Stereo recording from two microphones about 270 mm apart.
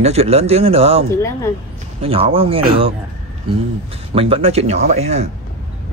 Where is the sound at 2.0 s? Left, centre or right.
Right.